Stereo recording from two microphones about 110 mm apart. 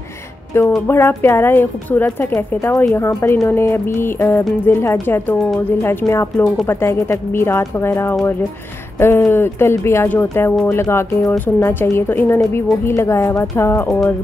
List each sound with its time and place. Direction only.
0.8 s speech: 25° left (ahead or behind)